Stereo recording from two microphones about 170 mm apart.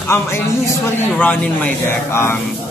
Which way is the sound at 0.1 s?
15° left (ahead or behind).